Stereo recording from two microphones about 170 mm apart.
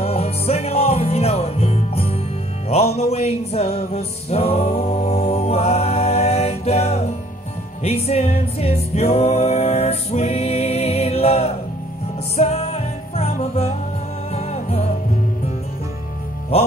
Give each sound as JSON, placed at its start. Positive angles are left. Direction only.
{"t": 0.0, "sound": "music", "side_deg": 40}